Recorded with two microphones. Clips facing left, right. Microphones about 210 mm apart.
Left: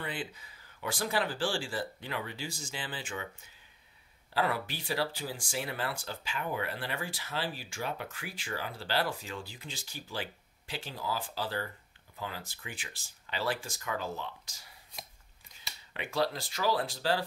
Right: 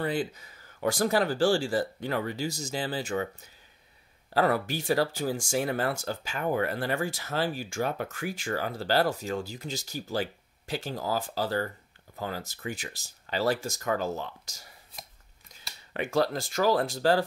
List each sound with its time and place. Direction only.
0.0 s speech: 40° right (ahead or behind)
4.3 s speech: 45° right (ahead or behind)
15.9 s speech: 45° right (ahead or behind)